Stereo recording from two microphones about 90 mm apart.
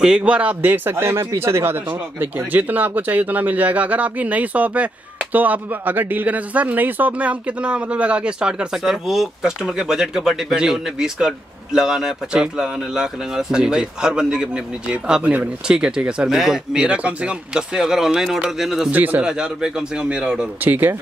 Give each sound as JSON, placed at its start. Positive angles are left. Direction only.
{"t": 0.0, "sound": "speech", "side_deg": -10}
{"t": 18.9, "sound": "speech", "side_deg": -20}